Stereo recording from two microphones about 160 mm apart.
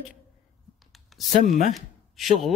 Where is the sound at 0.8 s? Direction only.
Centre (ahead or behind).